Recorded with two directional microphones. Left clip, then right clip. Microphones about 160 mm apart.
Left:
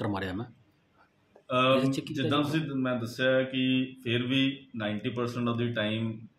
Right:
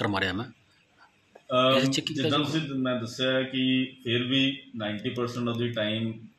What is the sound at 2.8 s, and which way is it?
Speech, 20° left (ahead or behind).